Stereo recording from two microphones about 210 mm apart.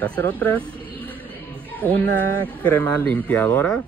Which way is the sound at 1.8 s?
10° left (ahead or behind).